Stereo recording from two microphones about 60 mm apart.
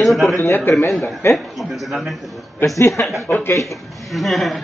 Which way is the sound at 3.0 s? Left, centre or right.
Left.